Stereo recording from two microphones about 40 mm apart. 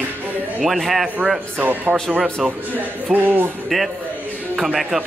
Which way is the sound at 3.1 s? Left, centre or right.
Right.